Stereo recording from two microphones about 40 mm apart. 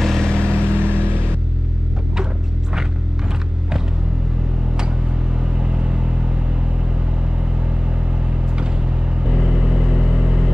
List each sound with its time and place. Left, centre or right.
0.0 s vehicle: centre
0.3 s vehicle: left
0.7 s vehicle: right
5.4 s vehicle: right
9.3 s vehicle: centre